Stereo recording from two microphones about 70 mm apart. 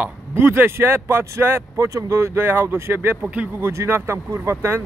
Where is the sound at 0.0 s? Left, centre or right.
Right.